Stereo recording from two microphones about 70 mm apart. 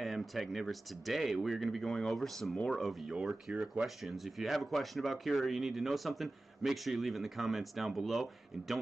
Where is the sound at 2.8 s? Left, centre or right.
Centre.